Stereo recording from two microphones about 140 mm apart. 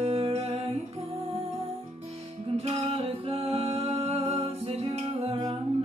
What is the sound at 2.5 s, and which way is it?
Music, 45° right (ahead or behind).